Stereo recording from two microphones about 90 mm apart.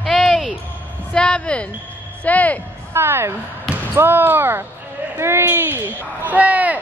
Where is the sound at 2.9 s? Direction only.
25° right (ahead or behind).